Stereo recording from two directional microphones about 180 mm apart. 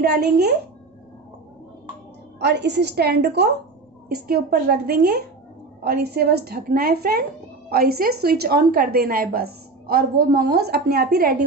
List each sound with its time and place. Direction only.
0.0 s a woman's voice: 60° right (ahead or behind)
2.3 s a woman's voice: 70° right (ahead or behind)